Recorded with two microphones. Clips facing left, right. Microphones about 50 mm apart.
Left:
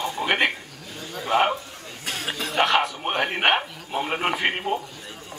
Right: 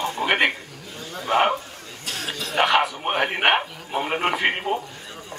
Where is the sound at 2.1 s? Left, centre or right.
Left.